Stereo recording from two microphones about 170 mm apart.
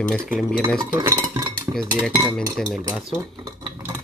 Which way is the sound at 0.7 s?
25° right (ahead or behind).